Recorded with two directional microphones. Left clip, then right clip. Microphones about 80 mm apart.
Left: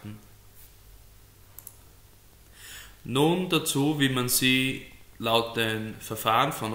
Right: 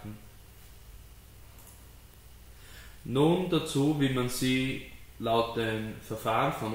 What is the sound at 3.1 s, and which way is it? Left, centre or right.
Speech, left.